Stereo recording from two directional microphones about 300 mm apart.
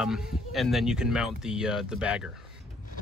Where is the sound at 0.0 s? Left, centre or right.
Centre.